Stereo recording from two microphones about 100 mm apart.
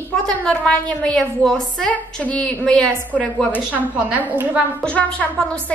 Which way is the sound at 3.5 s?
15° right (ahead or behind).